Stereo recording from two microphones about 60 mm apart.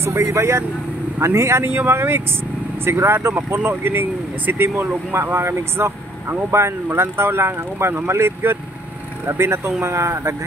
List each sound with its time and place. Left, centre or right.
0.0 s speech: right